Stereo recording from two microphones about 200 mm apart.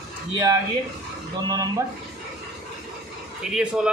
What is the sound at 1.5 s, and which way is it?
Speech, 20° right (ahead or behind).